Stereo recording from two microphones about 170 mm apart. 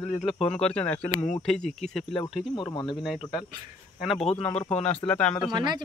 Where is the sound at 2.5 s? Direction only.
30° left (ahead or behind).